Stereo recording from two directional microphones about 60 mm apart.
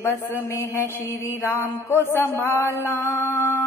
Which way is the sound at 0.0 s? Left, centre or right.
Left.